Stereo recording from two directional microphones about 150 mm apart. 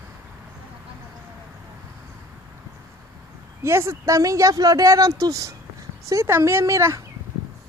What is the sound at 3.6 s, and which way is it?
Speech, 15° right (ahead or behind).